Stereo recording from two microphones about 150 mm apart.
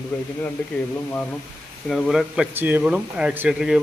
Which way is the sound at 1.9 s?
Centre (ahead or behind).